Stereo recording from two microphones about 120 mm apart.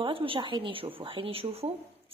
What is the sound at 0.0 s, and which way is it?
Speech, 50° right (ahead or behind).